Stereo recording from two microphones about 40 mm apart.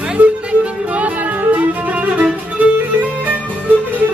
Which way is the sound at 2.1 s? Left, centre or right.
Right.